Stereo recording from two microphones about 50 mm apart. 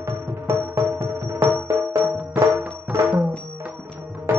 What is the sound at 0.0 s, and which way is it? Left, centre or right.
Music, right.